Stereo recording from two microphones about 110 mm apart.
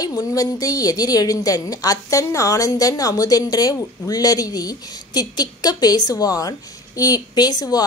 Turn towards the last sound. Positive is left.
turn(degrees=35)  # may be behind; listen again after turning